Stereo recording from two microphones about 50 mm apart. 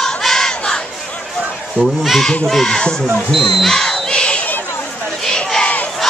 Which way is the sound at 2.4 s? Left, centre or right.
Centre.